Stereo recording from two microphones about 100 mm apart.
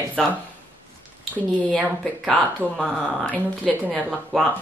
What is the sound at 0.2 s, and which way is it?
Speech, centre (ahead or behind).